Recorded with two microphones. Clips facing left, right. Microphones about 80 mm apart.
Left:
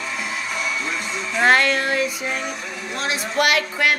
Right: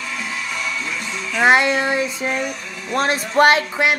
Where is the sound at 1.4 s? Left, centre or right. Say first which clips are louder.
Right 2 dB; centre.